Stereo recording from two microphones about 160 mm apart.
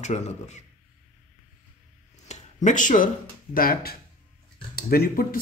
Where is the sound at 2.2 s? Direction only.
50° left (ahead or behind).